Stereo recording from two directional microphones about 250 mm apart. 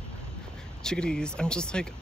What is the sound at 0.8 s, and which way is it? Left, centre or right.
Speech, centre.